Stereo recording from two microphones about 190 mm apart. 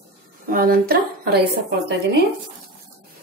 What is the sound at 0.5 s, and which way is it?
Speech, 50° right (ahead or behind).